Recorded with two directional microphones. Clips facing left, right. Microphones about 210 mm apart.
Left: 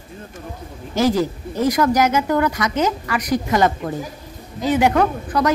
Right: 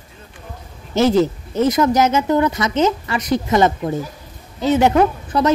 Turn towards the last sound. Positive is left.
turn(degrees=-25)  # may be behind; listen again after turning